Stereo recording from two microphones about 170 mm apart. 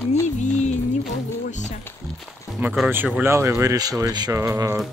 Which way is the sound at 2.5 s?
10° right (ahead or behind).